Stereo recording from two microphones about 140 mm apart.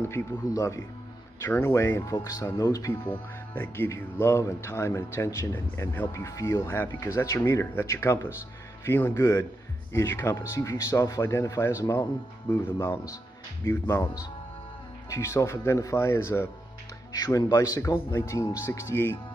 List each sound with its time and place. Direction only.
0.0 s speech: 15° left (ahead or behind)